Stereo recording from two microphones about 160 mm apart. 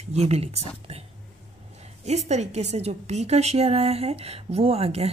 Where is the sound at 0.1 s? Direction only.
40° right (ahead or behind).